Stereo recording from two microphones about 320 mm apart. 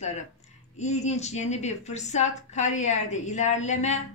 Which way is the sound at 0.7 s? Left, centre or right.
Left.